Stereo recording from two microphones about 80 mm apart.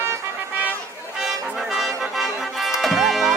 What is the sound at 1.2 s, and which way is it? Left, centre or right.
Music, centre.